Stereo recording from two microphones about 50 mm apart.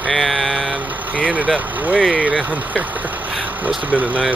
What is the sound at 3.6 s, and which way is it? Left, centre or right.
Speech, right.